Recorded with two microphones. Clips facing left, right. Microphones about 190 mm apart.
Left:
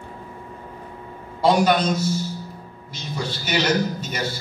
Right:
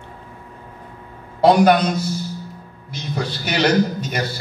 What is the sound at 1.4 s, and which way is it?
Speech, 60° right (ahead or behind).